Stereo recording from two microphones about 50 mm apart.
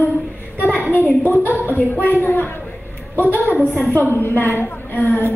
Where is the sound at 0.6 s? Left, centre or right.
Left.